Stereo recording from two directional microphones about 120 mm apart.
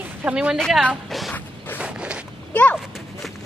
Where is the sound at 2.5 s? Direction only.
10° left (ahead or behind).